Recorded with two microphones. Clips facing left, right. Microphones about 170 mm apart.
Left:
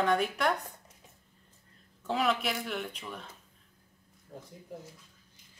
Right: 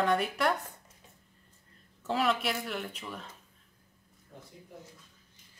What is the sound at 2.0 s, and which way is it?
Speech, centre (ahead or behind).